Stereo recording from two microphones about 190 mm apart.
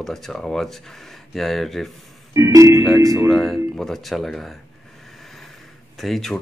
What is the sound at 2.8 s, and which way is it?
Speech, centre (ahead or behind).